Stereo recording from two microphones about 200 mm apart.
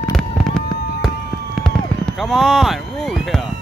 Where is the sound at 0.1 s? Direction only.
5° left (ahead or behind).